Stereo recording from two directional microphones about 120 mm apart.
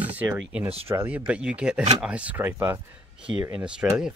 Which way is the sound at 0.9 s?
15° right (ahead or behind).